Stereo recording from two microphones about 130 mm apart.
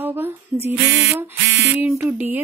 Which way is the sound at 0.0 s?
15° right (ahead or behind).